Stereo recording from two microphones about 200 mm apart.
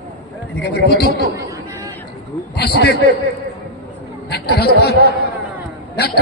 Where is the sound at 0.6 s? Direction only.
55° left (ahead or behind).